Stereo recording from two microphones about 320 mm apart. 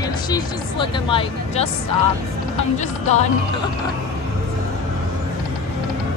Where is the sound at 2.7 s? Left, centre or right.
Left.